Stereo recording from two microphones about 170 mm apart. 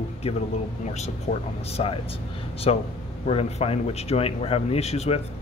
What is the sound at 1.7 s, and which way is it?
Speech, 35° left (ahead or behind).